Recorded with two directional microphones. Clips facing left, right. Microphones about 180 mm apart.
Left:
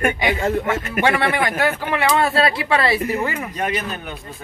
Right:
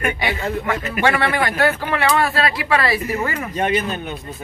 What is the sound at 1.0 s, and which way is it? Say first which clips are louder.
Speech: even; 15° left (ahead or behind).